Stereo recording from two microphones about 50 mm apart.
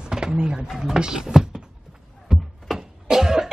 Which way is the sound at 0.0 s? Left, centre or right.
Centre.